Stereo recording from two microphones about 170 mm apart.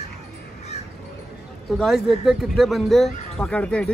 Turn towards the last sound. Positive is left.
turn(degrees=5)  # may be behind; listen again after turning